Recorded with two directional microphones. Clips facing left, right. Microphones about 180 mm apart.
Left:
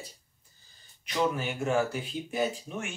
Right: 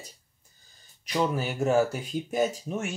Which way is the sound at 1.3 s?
40° right (ahead or behind).